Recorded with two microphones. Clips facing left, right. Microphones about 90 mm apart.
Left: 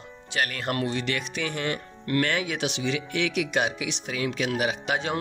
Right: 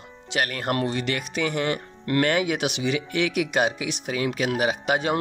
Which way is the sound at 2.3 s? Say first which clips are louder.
Right 4 dB; 60° right (ahead or behind).